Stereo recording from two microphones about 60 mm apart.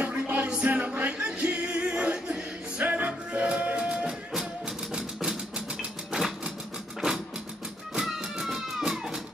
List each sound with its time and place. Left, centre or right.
0.0 s music: right; by 6.5 s centre
7.9 s music: centre